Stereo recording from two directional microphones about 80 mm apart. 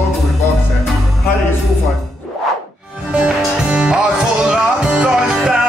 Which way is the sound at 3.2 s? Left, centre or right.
Centre.